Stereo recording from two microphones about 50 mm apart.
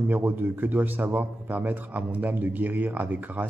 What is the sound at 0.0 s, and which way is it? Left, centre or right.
Speech, right.